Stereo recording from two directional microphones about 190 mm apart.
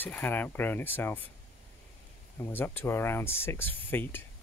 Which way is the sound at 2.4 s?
10° left (ahead or behind).